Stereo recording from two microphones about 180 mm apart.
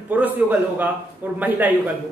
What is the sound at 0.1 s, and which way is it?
Speech, 10° right (ahead or behind).